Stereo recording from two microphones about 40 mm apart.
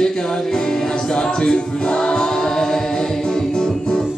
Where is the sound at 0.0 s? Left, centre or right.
Centre.